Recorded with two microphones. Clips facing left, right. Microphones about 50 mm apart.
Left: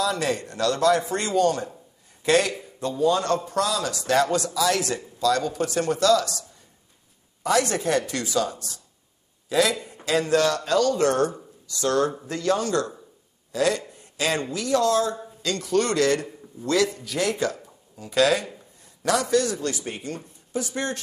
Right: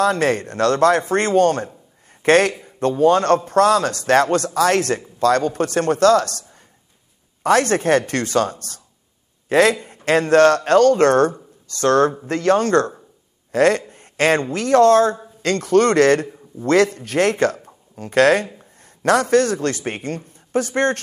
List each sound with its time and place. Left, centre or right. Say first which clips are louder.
0.0 s a man's voice: right 7 dB; right
13.5 s a sound: right 7 dB; right
14.5 s speech: right 9 dB; right